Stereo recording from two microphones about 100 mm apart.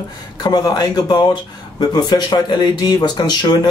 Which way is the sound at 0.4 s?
45° left (ahead or behind).